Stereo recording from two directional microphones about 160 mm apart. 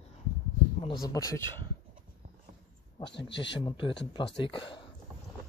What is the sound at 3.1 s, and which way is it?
Speech, 90° left.